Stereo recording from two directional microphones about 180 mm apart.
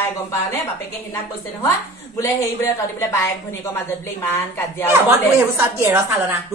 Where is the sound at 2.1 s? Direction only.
15° left (ahead or behind).